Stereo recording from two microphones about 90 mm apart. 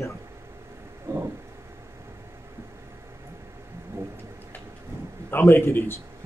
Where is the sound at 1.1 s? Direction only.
35° right (ahead or behind).